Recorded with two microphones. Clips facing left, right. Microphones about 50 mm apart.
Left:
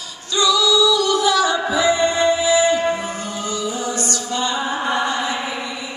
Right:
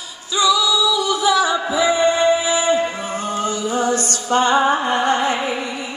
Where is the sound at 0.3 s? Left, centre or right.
Centre.